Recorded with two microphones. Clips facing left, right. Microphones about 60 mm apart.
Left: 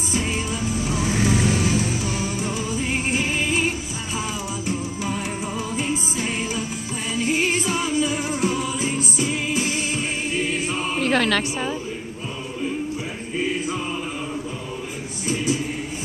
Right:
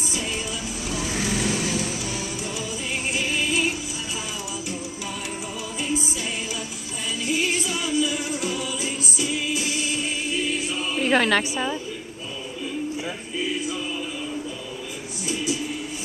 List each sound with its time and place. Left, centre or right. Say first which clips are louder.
0.1 s vehicle: left 6 dB; left
6.1 s music: left 4 dB; left
10.3 s choir: left 3 dB; left
11.1 s a woman's voice: right 1 dB; centre
11.5 s a woman's voice: even; centre
13.4 s choir: left 3 dB; left